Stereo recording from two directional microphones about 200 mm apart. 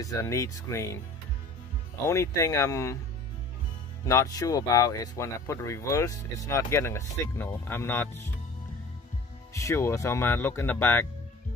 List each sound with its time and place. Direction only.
0.0 s speech: 15° left (ahead or behind)
2.0 s speech: 15° left (ahead or behind)
4.0 s speech: 15° left (ahead or behind)
9.5 s speech: 15° left (ahead or behind)